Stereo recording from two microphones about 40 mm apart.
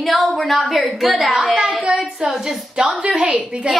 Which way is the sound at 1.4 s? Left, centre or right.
Right.